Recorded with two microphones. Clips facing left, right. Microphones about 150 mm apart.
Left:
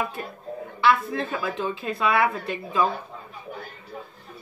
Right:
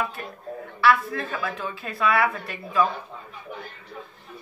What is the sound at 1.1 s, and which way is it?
Speech, 25° left (ahead or behind).